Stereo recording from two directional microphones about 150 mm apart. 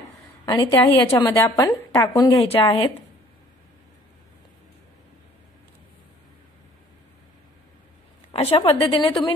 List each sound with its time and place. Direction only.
0.5 s a woman's voice: 25° left (ahead or behind)
2.3 s a woman's voice: 40° left (ahead or behind)
8.3 s a woman's voice: 40° left (ahead or behind)